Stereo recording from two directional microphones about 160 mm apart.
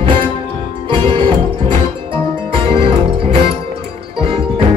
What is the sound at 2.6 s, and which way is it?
Music, 35° right (ahead or behind).